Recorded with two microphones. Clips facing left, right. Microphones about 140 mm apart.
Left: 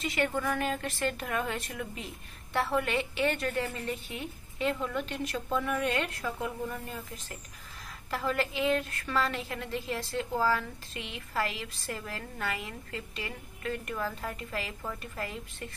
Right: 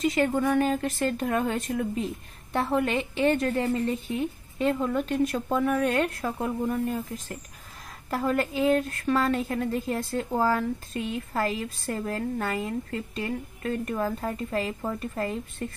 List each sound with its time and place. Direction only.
0.0 s a woman's voice: 25° right (ahead or behind)
4.6 s speech: 45° right (ahead or behind)
8.1 s a woman's voice: 40° right (ahead or behind)